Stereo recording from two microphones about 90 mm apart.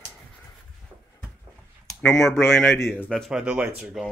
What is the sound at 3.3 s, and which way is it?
Speech, 15° right (ahead or behind).